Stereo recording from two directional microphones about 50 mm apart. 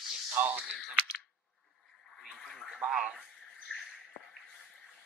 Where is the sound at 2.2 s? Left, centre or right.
Centre.